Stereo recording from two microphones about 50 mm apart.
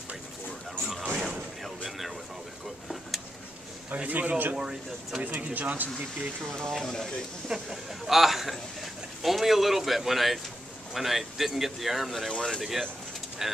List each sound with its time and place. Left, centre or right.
0.8 s a sound: centre
3.9 s speech: right
4.6 s speech: centre
5.2 s speech: right
6.5 s speech: centre
7.4 s speech: centre
12.3 s speech: centre
13.4 s speech: centre